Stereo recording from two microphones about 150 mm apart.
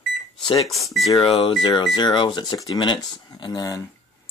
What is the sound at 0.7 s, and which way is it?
Speech, centre (ahead or behind).